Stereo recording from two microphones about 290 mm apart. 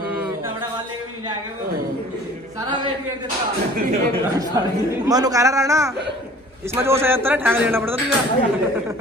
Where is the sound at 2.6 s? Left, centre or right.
Centre.